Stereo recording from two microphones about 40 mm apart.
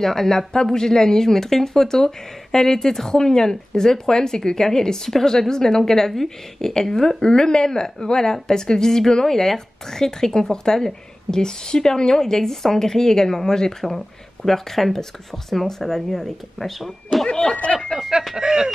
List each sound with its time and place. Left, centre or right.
0.0 s speech: centre
17.3 s speech: left
17.9 s a sound: centre